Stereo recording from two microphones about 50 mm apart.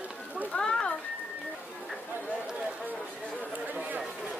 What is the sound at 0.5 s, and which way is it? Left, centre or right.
Children playing, centre.